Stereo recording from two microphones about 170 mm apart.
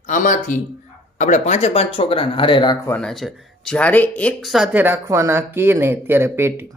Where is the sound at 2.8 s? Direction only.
5° left (ahead or behind); by 6.7 s 15° right (ahead or behind).